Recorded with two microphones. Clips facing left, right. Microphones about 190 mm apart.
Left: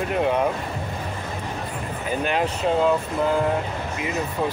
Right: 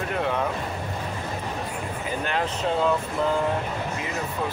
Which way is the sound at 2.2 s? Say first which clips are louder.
Left 4 dB; 15° left (ahead or behind).